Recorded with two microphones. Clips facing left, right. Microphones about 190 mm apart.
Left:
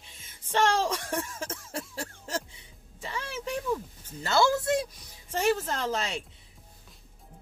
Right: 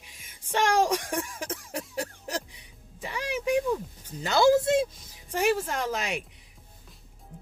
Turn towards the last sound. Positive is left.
turn(degrees=-15)  # may be behind; listen again after turning